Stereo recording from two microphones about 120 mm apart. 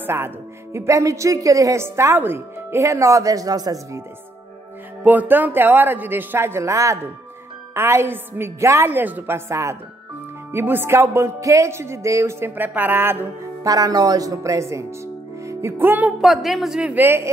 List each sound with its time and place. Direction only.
0.0 s speech: 20° right (ahead or behind)
5.0 s a man's voice: 15° right (ahead or behind)
13.7 s speech: 30° right (ahead or behind)
15.4 s music: 20° right (ahead or behind)
16.2 s a man's voice: centre (ahead or behind); by 17.3 s 20° right (ahead or behind)